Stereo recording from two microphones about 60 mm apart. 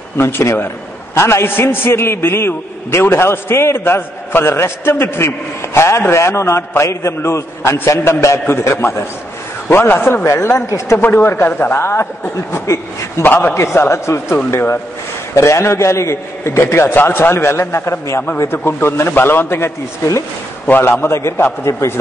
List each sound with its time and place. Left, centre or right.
0.2 s a man's voice: left
10.2 s speech: left
11.0 s a man's voice: left
12.5 s speech: left
13.2 s a man's voice: left
13.7 s a man's voice: left
15.3 s a man's voice: left
18.5 s a man's voice: left
21.1 s a man's voice: left